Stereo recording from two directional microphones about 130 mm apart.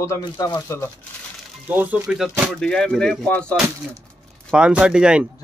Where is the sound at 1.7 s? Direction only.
15° right (ahead or behind).